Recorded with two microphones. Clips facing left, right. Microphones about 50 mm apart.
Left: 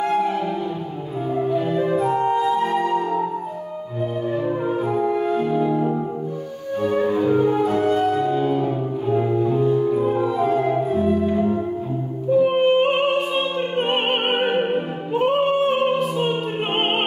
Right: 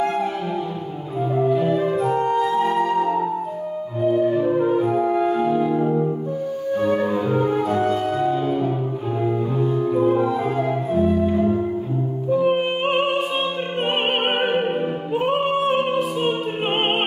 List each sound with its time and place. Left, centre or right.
0.0 s music: centre
1.4 s music: centre
4.3 s music: centre
5.0 s music: centre
5.3 s music: centre